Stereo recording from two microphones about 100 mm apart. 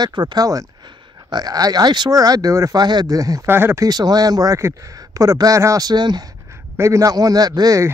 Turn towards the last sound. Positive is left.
turn(degrees=-40)  # may be behind; listen again after turning